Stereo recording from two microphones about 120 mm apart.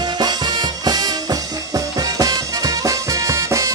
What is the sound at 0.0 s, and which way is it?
Music, 35° right (ahead or behind).